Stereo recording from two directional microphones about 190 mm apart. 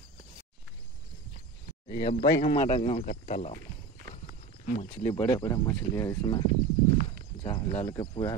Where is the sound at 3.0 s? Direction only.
40° left (ahead or behind).